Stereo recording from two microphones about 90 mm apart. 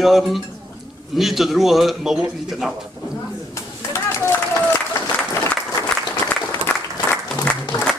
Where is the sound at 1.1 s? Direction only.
Centre (ahead or behind).